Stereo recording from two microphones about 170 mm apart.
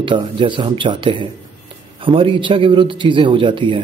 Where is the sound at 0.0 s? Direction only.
30° right (ahead or behind).